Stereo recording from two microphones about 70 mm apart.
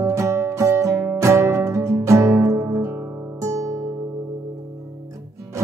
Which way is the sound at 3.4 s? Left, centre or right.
Right.